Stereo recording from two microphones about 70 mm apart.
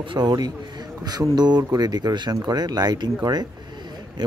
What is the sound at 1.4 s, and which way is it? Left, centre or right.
Speech, right.